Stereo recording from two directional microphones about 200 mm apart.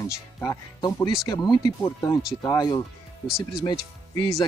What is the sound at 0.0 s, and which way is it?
Speech, 20° left (ahead or behind).